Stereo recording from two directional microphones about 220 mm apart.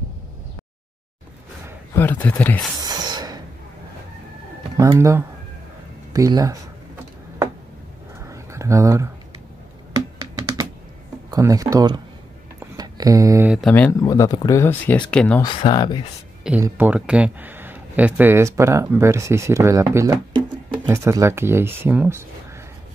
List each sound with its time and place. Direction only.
2.0 s speech: 10° left (ahead or behind)
2.8 s a sound: 20° right (ahead or behind)
4.7 s speech: 15° right (ahead or behind)
8.3 s a sound: 15° right (ahead or behind)
11.2 s speech: 15° right (ahead or behind)
12.7 s a sound: 15° right (ahead or behind)
13.5 s speech: centre (ahead or behind)
15.4 s speech: 20° left (ahead or behind)
16.4 s speech: 10° right (ahead or behind)